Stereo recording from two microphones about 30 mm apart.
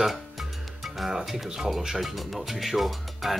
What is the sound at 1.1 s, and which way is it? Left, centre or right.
Speech, centre.